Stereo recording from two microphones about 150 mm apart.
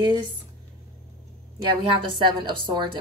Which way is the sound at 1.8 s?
35° right (ahead or behind).